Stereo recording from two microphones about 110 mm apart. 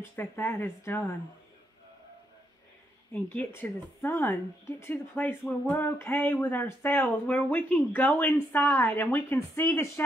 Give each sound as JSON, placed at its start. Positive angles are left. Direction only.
{"t": 0.0, "sound": "speech", "side_deg": 20}
{"t": 3.1, "sound": "speech", "side_deg": 20}